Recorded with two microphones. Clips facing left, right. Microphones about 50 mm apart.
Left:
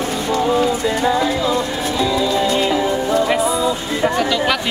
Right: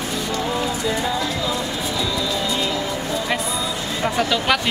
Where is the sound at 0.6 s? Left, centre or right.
Centre.